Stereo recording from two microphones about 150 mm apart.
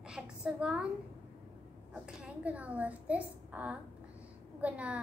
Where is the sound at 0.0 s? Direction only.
5° right (ahead or behind).